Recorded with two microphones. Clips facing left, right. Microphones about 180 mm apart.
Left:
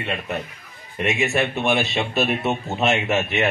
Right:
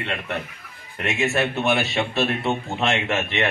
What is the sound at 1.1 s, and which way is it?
A man's voice, 20° left (ahead or behind).